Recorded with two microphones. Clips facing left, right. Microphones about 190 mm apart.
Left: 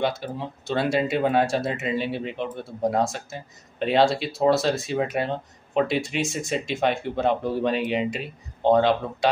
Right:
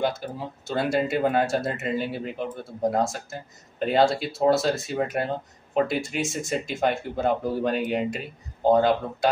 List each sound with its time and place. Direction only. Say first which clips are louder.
0.0 s speech: left 1 dB; centre (ahead or behind)